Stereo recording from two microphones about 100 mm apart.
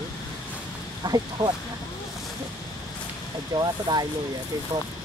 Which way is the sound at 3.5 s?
45° right (ahead or behind).